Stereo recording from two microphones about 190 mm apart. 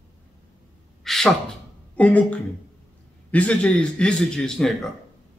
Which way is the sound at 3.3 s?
5° left (ahead or behind).